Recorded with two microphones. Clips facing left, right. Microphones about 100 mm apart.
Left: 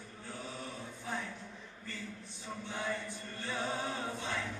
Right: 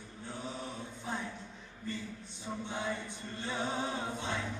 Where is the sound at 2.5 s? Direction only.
20° right (ahead or behind).